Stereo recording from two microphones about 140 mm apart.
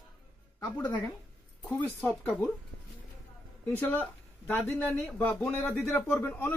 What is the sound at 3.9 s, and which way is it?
Speech, 15° left (ahead or behind).